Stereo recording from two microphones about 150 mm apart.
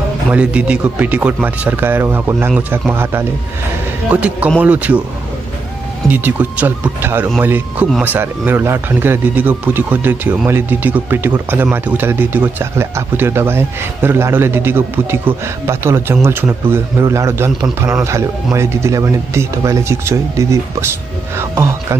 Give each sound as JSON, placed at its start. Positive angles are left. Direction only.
{"t": 0.3, "sound": "a man's voice", "side_deg": -10}
{"t": 6.0, "sound": "a man's voice", "side_deg": -10}